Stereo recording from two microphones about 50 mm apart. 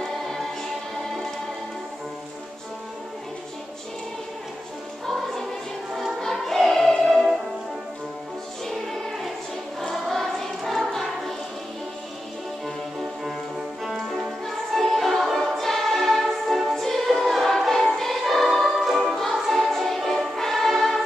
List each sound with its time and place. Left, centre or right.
0.0 s music: centre
6.2 s music: centre
7.1 s music: centre
8.6 s music: centre
9.8 s choir: centre
12.6 s music: centre
14.7 s choir: centre